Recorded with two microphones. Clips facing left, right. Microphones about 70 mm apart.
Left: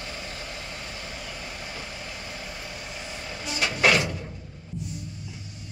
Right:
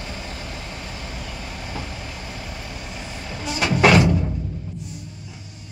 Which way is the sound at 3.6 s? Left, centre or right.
Right.